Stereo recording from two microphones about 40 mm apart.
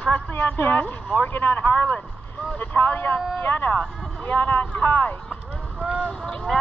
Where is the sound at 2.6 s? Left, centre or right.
Left.